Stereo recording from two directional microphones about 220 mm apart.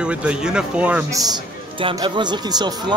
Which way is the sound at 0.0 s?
5° right (ahead or behind).